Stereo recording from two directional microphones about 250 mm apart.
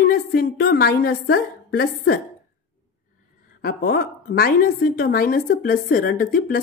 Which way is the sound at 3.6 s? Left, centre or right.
Left.